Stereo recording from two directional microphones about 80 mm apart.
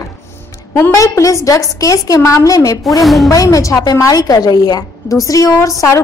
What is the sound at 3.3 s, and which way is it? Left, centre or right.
A woman's voice, left.